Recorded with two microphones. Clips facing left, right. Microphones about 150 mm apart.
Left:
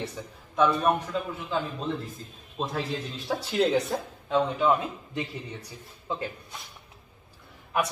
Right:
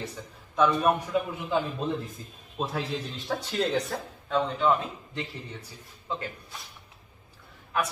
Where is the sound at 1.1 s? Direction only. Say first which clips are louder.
Right 4 dB; 10° right (ahead or behind).